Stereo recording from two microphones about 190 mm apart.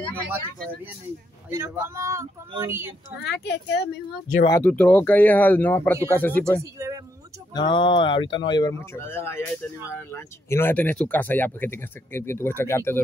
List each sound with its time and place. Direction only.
1.5 s speech: 15° right (ahead or behind)
3.4 s speech: 65° left (ahead or behind)
4.5 s speech: 10° left (ahead or behind)
6.6 s speech: 15° right (ahead or behind)
7.5 s speech: 25° left (ahead or behind)